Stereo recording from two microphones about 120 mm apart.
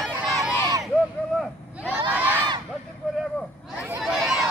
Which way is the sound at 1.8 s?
15° right (ahead or behind).